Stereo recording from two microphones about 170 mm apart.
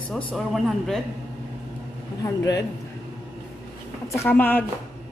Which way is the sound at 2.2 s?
20° left (ahead or behind).